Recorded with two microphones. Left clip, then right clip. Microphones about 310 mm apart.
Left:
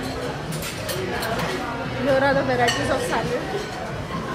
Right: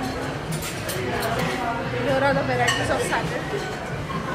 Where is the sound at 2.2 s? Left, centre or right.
Left.